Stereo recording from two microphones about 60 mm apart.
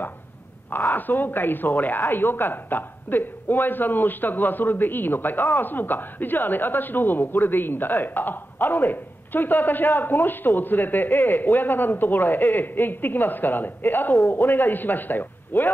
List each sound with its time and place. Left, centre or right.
0.9 s speech: left